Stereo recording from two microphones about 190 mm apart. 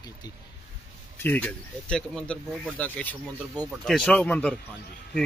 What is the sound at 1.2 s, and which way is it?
Speech, 10° left (ahead or behind).